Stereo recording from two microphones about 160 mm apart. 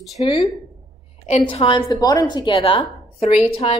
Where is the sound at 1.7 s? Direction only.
20° left (ahead or behind).